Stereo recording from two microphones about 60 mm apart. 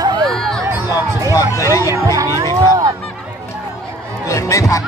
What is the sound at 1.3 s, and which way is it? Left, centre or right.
Speech, left.